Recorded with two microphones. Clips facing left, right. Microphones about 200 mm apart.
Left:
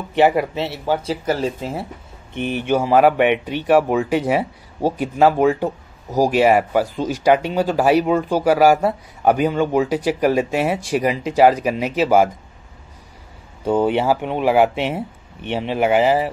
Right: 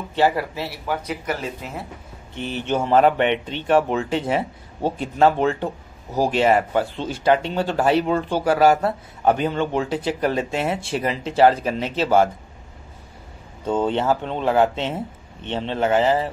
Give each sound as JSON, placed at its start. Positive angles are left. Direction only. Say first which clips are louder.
{"t": 0.1, "sound": "speech", "louder": "left 5 dB", "side_deg": 20}
{"t": 2.3, "sound": "speech", "louder": "left 4 dB", "side_deg": 15}
{"t": 13.7, "sound": "speech", "louder": "left 3 dB", "side_deg": 10}